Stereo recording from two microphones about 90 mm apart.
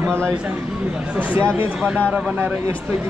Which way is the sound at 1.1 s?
25° right (ahead or behind).